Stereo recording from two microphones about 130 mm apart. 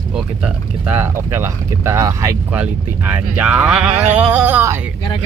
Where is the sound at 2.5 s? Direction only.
10° right (ahead or behind).